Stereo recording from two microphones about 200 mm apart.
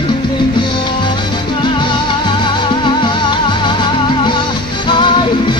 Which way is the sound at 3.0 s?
25° left (ahead or behind).